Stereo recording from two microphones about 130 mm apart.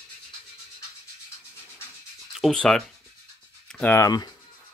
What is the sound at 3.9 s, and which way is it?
Speech, 25° left (ahead or behind).